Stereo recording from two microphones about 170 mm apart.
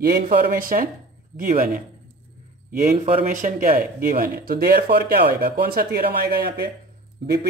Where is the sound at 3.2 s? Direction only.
50° right (ahead or behind).